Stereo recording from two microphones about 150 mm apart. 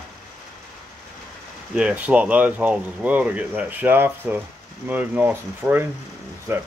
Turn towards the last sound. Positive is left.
turn(degrees=-15)  # may be behind; listen again after turning